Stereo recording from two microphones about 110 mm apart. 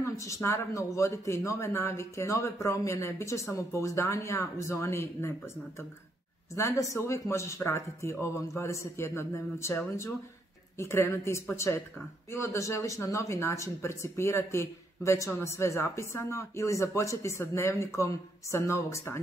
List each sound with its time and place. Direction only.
0.2 s speech: 25° left (ahead or behind)
6.5 s speech: 25° left (ahead or behind)